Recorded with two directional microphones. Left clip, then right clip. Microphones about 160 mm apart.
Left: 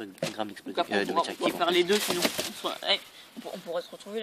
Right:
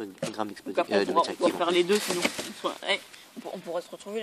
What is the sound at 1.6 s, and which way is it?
Speech, 15° right (ahead or behind).